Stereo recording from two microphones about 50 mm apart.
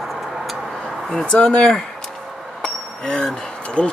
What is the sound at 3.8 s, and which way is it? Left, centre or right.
Speech, left.